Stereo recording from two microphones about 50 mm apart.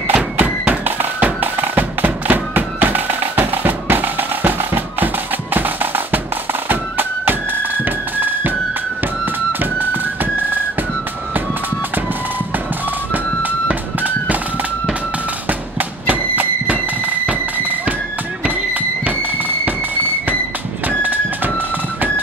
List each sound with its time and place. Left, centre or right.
0.1 s music: right
13.1 s music: right
15.4 s fireworks: right
18.4 s a sound: right
21.0 s music: right